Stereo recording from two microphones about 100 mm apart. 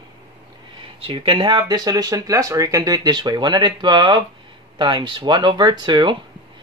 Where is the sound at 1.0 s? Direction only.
60° right (ahead or behind).